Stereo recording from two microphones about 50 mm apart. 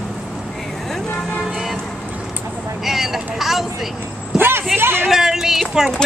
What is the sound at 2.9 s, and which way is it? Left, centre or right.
Vehicle, centre.